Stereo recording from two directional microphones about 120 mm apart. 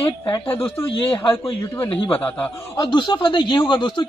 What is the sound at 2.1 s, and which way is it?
Speech, 15° left (ahead or behind).